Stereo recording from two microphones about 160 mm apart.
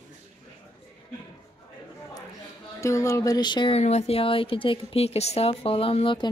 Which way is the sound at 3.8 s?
45° left (ahead or behind).